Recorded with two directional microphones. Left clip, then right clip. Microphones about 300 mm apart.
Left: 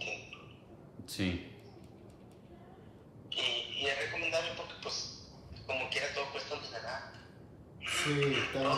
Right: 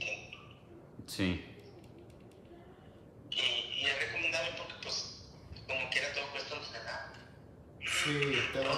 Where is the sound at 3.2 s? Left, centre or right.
Centre.